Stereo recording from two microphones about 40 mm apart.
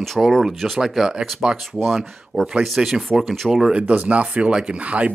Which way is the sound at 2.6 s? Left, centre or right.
Centre.